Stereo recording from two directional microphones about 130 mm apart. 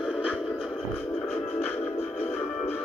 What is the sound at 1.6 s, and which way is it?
Music, 15° left (ahead or behind).